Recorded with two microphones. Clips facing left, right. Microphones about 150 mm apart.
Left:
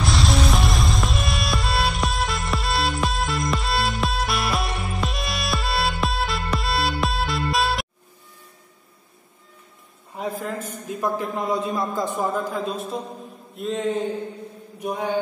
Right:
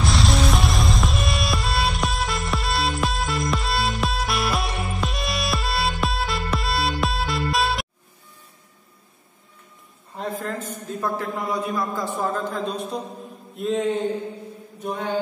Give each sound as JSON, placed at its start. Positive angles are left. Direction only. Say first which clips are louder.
{"t": 0.0, "sound": "music", "louder": "even", "side_deg": 0}
{"t": 10.1, "sound": "a man's voice", "louder": "even", "side_deg": 10}
{"t": 13.6, "sound": "mantra", "louder": "right 2 dB", "side_deg": 0}
{"t": 14.8, "sound": "mantra", "louder": "left 2 dB", "side_deg": 10}